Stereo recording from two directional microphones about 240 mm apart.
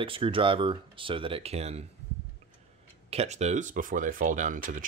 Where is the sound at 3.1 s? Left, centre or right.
Right.